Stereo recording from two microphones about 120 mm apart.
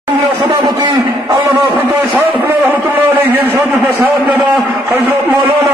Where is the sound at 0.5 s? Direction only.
35° right (ahead or behind).